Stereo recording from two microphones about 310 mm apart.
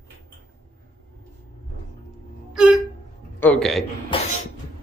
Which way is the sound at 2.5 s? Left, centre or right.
Centre.